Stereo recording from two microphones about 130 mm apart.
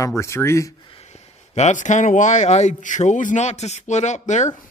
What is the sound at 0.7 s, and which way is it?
Speech, 40° left (ahead or behind).